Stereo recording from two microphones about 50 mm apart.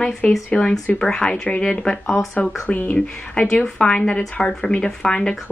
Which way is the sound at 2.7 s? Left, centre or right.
Left.